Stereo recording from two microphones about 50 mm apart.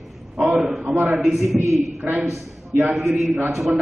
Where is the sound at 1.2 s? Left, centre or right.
Centre.